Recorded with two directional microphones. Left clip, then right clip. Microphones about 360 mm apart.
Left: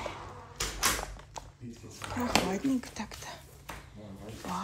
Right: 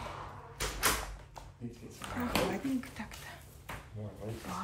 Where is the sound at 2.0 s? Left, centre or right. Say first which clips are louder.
Left 3 dB; left.